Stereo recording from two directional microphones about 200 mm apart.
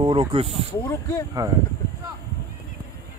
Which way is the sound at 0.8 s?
15° left (ahead or behind).